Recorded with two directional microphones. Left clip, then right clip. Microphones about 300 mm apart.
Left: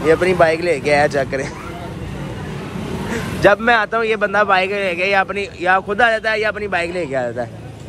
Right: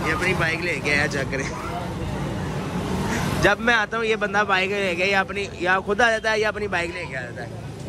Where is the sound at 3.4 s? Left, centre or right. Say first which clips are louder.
Left 7 dB; centre.